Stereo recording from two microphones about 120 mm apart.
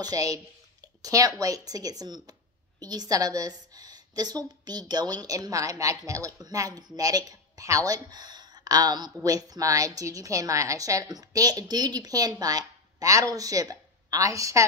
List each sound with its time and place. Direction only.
0.0 s a woman's voice: 30° right (ahead or behind)